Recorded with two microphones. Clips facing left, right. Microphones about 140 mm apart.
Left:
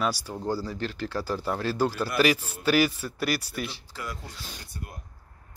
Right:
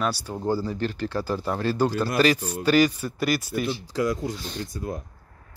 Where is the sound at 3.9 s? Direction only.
90° right.